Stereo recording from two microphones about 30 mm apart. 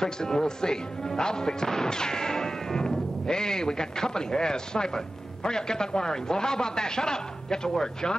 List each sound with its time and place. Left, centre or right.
0.0 s speech: left